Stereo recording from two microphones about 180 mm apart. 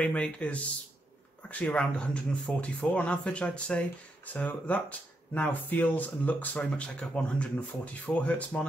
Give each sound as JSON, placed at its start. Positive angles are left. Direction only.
{"t": 0.0, "sound": "speech", "side_deg": 5}